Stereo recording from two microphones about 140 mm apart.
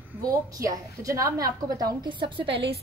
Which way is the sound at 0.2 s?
25° right (ahead or behind).